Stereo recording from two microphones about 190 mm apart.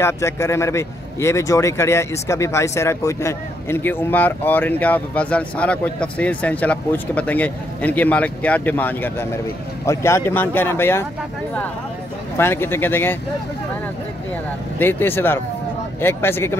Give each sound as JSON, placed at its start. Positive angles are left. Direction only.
{"t": 0.0, "sound": "a man's voice", "side_deg": 15}
{"t": 12.4, "sound": "a man's voice", "side_deg": 10}
{"t": 14.8, "sound": "a man's voice", "side_deg": 10}